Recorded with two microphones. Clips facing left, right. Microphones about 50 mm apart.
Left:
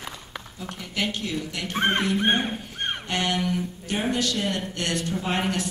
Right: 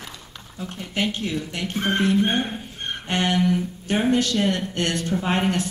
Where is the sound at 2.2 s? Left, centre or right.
Left.